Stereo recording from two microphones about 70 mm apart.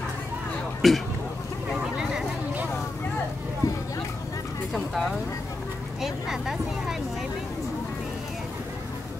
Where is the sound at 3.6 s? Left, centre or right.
Left.